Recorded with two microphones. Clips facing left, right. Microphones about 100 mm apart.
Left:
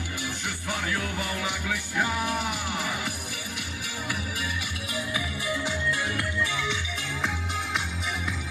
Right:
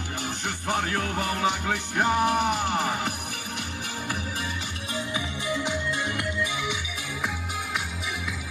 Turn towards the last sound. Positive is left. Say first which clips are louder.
# left 1 dB
turn(degrees=-15)  # may be behind; listen again after turning